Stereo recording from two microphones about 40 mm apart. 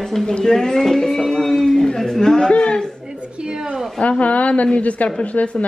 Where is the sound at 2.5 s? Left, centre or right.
Left.